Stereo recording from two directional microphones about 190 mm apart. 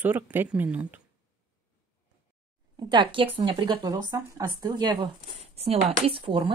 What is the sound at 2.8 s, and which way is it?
Speech, 25° right (ahead or behind).